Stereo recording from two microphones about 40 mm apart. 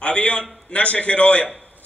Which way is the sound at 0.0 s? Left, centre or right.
Left.